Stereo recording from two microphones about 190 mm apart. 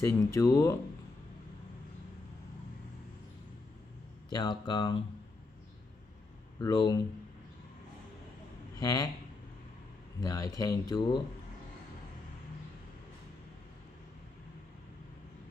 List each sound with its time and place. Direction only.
0.0 s speech: 15° left (ahead or behind)
4.3 s speech: 20° left (ahead or behind)
6.6 s speech: 20° left (ahead or behind)
8.7 s speech: 20° left (ahead or behind)
10.2 s speech: 20° left (ahead or behind)